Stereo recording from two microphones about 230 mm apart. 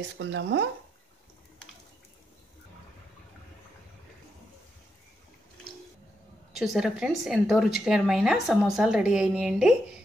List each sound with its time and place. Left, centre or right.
0.2 s speech: right
6.5 s a woman's voice: centre